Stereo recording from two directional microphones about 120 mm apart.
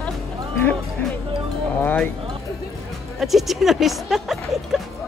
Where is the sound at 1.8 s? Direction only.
15° left (ahead or behind).